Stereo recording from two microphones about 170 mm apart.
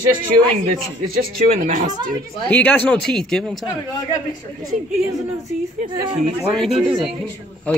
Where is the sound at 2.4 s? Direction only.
10° left (ahead or behind).